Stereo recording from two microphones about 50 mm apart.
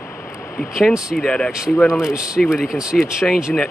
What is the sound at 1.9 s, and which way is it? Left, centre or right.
Speech, centre.